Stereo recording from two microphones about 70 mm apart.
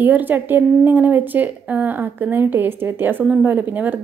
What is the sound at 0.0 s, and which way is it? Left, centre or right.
Speech, right.